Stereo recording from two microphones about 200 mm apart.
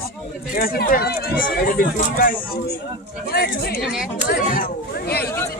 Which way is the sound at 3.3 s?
50° left (ahead or behind).